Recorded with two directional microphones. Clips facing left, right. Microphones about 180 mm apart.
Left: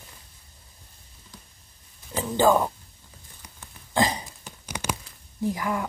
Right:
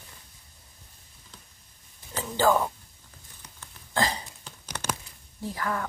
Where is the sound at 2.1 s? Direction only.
15° left (ahead or behind).